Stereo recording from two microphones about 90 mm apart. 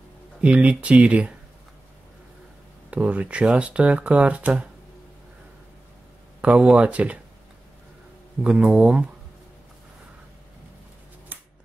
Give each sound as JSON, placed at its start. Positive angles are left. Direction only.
{"t": 0.4, "sound": "speech", "side_deg": -15}
{"t": 2.9, "sound": "speech", "side_deg": -15}
{"t": 6.4, "sound": "speech", "side_deg": -15}
{"t": 8.5, "sound": "speech", "side_deg": -15}